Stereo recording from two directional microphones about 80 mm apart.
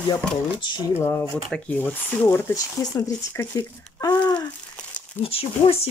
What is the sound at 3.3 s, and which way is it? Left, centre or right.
Speech, left.